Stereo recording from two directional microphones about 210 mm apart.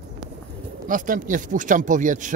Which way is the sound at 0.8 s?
40° right (ahead or behind).